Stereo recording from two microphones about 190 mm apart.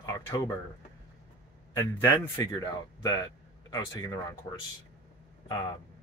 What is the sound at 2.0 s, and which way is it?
A man's voice, 15° left (ahead or behind).